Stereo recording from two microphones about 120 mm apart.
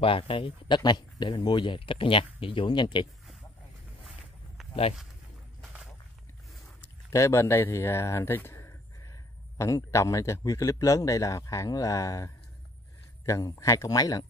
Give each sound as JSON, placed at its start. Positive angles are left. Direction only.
{"t": 0.0, "sound": "speech", "side_deg": 50}
{"t": 6.8, "sound": "a sound", "side_deg": 25}
{"t": 9.6, "sound": "speech", "side_deg": 25}